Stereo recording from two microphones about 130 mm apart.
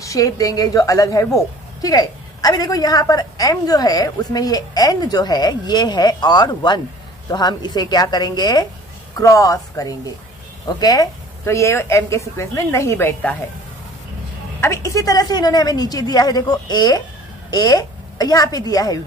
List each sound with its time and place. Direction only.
0.0 s a woman's voice: 25° left (ahead or behind)
14.6 s a woman's voice: 20° left (ahead or behind)